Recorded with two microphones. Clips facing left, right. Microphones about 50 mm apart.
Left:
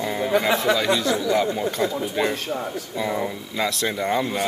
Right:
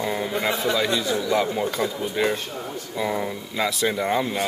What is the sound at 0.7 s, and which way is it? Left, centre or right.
Speech, left.